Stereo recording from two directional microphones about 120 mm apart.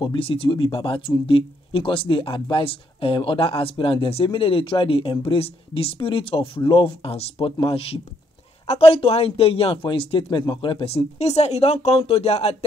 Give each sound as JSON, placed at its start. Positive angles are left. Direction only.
{"t": 0.0, "sound": "a man's voice", "side_deg": 45}